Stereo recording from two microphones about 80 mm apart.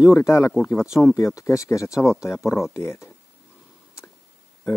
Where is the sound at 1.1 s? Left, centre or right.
Left.